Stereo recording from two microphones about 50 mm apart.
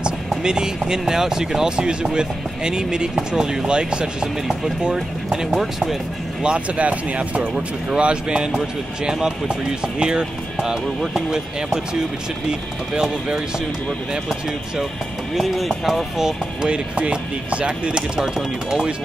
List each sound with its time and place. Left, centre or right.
0.3 s speech: centre
6.4 s speech: right
15.3 s speech: centre
16.6 s speech: right